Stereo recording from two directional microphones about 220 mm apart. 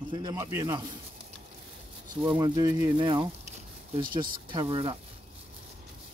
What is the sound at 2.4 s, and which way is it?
Speech, 20° right (ahead or behind).